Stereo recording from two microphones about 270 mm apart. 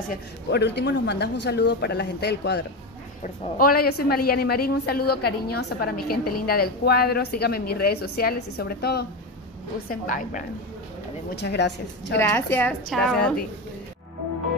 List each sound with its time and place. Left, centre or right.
0.1 s a woman's voice: left
12.2 s a woman's voice: centre